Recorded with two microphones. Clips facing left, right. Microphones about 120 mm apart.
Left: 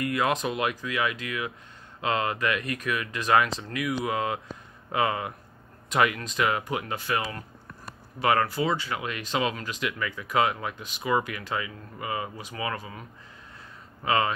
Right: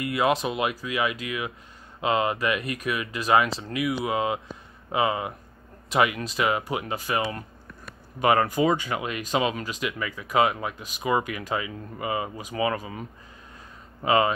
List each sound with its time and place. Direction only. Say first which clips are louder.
0.0 s speech: right 2 dB; 10° right (ahead or behind)
8.2 s speech: right 3 dB; 15° right (ahead or behind)
14.0 s speech: right 4 dB; 20° right (ahead or behind)